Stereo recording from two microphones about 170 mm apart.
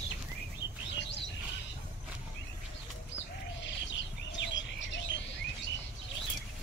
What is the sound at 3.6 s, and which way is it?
Bird, 90° left.